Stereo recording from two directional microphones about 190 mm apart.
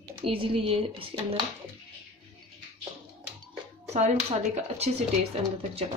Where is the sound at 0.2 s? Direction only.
30° right (ahead or behind).